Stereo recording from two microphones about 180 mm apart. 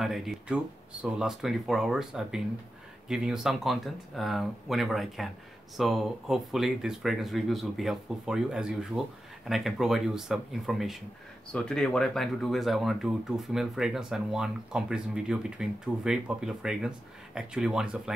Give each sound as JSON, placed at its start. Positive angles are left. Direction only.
{"t": 0.0, "sound": "speech", "side_deg": 0}